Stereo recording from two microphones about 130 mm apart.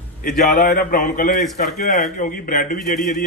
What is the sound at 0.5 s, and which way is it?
Speech, 90° left.